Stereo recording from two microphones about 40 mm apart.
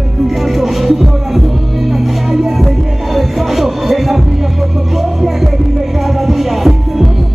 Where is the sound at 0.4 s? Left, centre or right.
Centre.